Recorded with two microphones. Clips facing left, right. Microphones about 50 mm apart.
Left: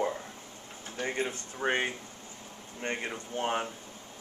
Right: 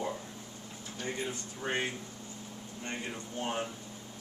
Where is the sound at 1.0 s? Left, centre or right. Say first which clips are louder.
Left 4 dB; left.